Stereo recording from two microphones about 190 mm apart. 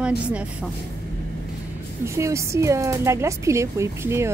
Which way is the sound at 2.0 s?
15° right (ahead or behind).